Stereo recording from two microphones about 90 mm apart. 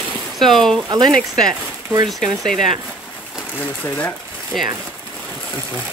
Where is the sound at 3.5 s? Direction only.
15° left (ahead or behind).